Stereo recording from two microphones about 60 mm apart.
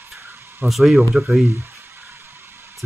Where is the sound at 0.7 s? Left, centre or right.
Centre.